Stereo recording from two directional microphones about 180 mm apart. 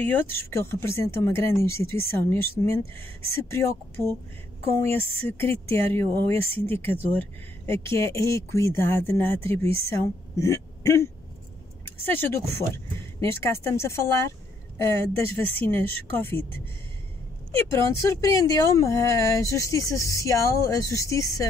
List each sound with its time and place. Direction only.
0.0 s speech: 10° left (ahead or behind)